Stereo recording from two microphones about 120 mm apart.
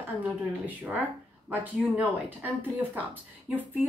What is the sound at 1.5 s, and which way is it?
A woman's voice, 15° right (ahead or behind).